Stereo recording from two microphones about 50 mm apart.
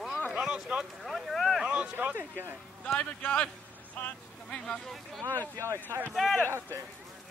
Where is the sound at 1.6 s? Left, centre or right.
Right.